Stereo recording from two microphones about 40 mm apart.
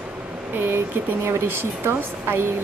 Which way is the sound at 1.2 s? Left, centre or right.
Right.